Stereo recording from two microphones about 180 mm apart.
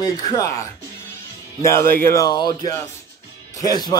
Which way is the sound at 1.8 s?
55° right (ahead or behind).